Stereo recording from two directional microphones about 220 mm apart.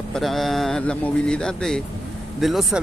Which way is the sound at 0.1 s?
Centre (ahead or behind).